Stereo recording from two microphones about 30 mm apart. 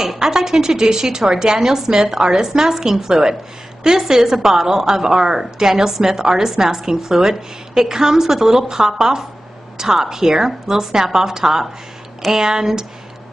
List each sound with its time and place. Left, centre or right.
0.0 s a woman's voice: centre